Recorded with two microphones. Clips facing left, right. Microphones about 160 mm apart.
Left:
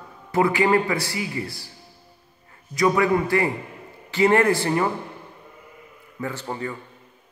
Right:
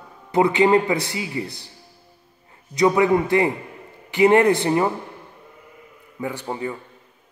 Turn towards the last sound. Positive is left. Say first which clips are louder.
# right 2 dB
turn(degrees=-15)  # may be behind; listen again after turning